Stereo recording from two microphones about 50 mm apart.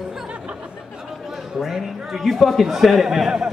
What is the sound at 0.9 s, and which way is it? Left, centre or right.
A man's voice, centre.